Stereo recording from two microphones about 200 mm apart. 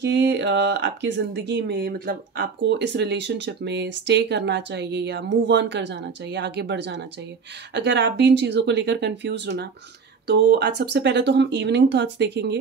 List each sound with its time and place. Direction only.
0.0 s speech: 60° right (ahead or behind)